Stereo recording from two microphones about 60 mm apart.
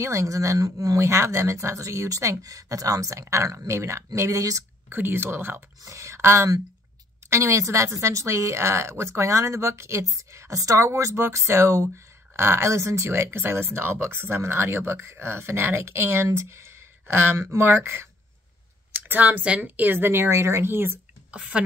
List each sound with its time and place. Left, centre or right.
0.0 s speech: right
4.8 s speech: right
5.9 s speech: right
10.9 s speech: right
18.9 s speech: right
21.3 s a woman's voice: centre